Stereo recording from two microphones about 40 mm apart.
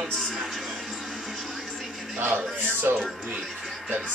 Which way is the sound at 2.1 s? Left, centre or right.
Right.